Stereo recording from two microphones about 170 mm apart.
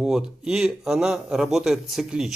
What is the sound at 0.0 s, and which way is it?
Speech, 5° right (ahead or behind).